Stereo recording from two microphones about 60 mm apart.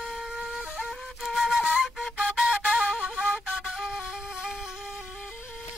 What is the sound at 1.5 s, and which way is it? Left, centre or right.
Flute, centre.